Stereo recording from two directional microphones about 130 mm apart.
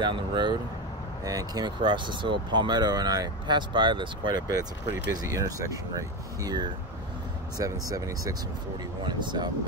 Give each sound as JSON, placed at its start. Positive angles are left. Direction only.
{"t": 0.0, "sound": "speech", "side_deg": -40}